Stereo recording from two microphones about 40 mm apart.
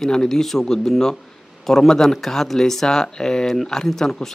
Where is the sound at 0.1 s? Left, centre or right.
Centre.